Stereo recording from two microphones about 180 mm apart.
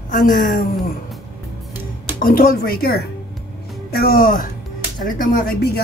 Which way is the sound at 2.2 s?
55° left (ahead or behind).